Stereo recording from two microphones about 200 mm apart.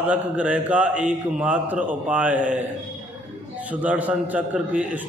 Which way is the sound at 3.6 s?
5° right (ahead or behind).